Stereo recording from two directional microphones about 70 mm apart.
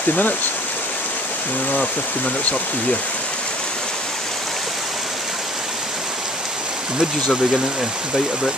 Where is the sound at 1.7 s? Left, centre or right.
Left.